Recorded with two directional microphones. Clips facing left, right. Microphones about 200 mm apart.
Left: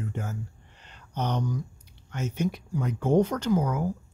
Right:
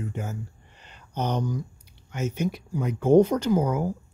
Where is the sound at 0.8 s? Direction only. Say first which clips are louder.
Right 2 dB; 10° right (ahead or behind).